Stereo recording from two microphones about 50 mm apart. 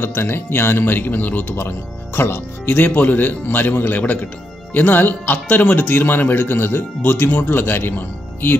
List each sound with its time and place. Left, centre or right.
0.0 s speech: left
2.1 s speech: left
2.6 s speech: left